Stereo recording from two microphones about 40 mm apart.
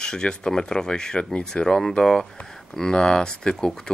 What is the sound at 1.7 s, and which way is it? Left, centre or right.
Speech, centre.